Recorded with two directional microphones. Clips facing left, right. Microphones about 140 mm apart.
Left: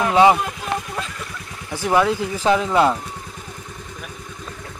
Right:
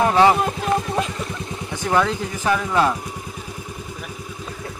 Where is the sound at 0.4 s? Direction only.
30° right (ahead or behind).